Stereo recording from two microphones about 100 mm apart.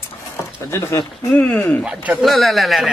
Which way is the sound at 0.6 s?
30° left (ahead or behind).